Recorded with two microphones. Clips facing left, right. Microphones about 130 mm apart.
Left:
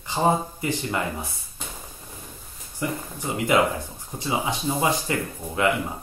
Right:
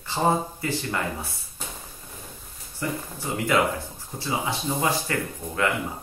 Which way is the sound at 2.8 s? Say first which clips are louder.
Left 1 dB; 15° left (ahead or behind).